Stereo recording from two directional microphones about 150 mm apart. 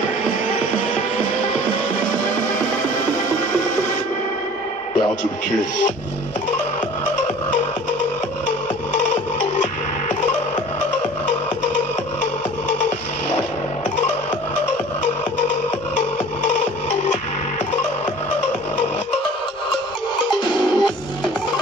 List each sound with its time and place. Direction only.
8.5 s music: 55° left (ahead or behind)
20.3 s music: 35° left (ahead or behind)